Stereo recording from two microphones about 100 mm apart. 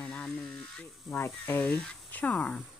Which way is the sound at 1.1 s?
20° left (ahead or behind).